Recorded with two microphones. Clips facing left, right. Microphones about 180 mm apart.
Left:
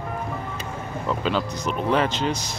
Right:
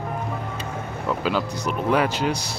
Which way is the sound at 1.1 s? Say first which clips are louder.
Right 1 dB; 10° right (ahead or behind).